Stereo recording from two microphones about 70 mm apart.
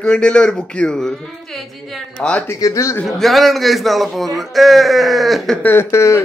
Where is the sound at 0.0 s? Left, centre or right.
Centre.